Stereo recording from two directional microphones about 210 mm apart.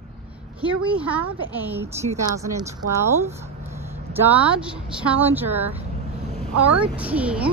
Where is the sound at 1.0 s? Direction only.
5° right (ahead or behind).